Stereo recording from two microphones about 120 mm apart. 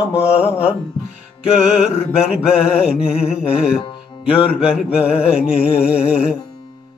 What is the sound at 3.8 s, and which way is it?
Speech, 50° left (ahead or behind).